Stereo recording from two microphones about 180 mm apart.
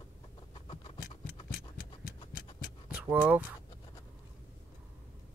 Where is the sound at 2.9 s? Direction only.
10° right (ahead or behind).